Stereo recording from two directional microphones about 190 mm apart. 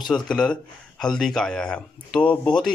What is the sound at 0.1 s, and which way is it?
Speech, 5° left (ahead or behind).